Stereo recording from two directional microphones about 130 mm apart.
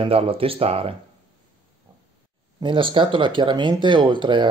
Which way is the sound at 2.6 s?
40° right (ahead or behind).